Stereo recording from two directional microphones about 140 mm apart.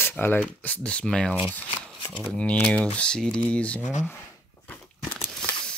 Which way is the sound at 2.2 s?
10° left (ahead or behind).